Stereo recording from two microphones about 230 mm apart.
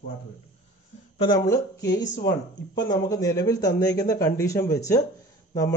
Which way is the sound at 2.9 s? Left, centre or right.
Centre.